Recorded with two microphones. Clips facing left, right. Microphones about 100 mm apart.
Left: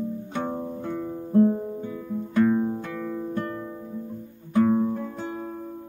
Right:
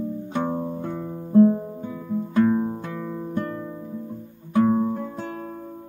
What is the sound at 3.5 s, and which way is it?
Music, centre (ahead or behind).